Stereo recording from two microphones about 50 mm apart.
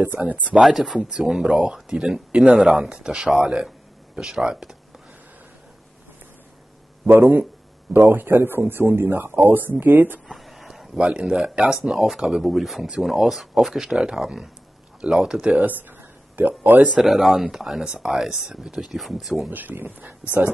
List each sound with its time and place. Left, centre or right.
0.2 s a man's voice: right
0.6 s speech: centre
7.1 s a man's voice: right
10.3 s a sound: centre
11.0 s a man's voice: centre
16.3 s speech: right
16.9 s speech: centre
19.5 s speech: right